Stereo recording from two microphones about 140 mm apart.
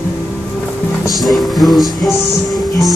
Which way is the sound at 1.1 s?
Centre (ahead or behind).